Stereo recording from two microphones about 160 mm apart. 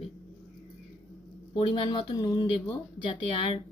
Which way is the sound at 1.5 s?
30° left (ahead or behind).